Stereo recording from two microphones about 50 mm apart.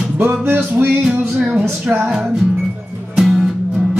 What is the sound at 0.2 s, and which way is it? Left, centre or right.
Music, right.